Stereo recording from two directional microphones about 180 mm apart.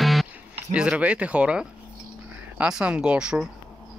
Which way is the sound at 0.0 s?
Centre (ahead or behind).